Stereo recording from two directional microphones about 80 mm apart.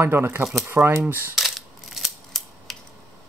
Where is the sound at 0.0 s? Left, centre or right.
Right.